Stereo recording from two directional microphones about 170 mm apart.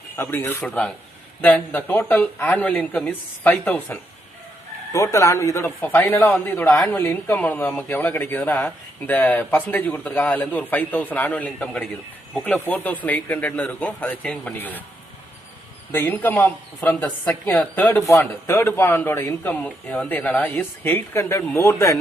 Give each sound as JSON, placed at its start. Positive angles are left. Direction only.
{"t": 0.1, "sound": "speech", "side_deg": 15}
{"t": 0.7, "sound": "speech", "side_deg": 0}
{"t": 15.9, "sound": "speech", "side_deg": 10}